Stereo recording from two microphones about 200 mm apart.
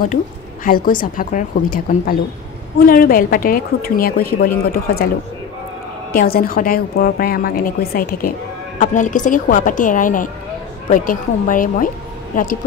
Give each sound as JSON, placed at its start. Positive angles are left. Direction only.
{"t": 0.7, "sound": "a woman's voice", "side_deg": 45}
{"t": 6.1, "sound": "a woman's voice", "side_deg": 45}